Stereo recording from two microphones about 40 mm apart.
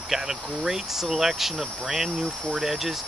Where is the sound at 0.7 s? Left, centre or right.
Centre.